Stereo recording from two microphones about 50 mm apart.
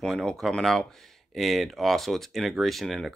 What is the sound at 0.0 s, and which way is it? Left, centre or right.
Speech, centre.